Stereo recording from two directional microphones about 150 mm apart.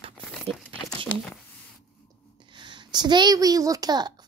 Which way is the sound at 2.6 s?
30° right (ahead or behind).